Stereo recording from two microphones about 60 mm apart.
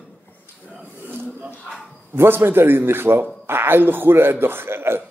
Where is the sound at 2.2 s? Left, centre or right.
Right.